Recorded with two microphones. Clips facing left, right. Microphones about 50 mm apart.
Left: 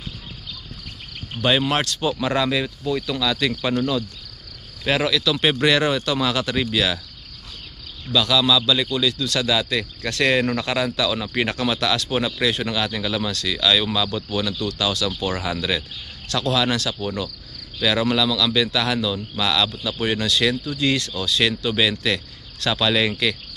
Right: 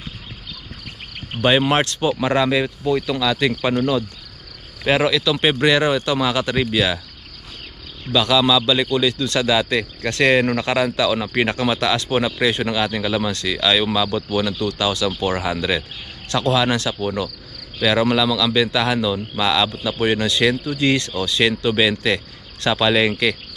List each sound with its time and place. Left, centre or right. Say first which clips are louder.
1.5 s speech: right 3 dB; right
8.1 s a man's voice: right 2 dB; right
16.3 s a man's voice: right 3 dB; right